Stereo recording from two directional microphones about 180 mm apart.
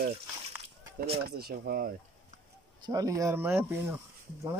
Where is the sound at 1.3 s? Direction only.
60° right (ahead or behind).